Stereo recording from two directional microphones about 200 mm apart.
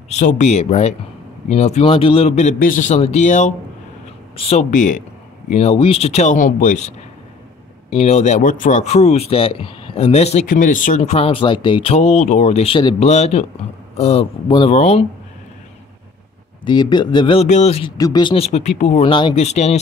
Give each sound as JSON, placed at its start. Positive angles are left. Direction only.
{"t": 0.1, "sound": "speech", "side_deg": 35}
{"t": 7.9, "sound": "speech", "side_deg": 35}
{"t": 16.6, "sound": "speech", "side_deg": 20}
{"t": 17.9, "sound": "speech", "side_deg": 20}